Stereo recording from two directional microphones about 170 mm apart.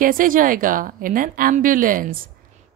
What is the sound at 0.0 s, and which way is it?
Speech, 55° right (ahead or behind).